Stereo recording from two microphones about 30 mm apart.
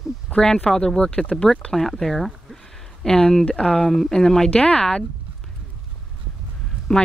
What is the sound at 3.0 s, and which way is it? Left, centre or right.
Speech, left.